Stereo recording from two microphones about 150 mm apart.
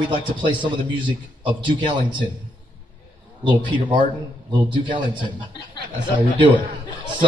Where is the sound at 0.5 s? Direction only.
30° right (ahead or behind).